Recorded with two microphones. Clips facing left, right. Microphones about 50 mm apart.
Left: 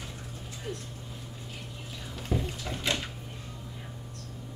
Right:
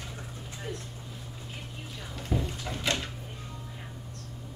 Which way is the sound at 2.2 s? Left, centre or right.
Centre.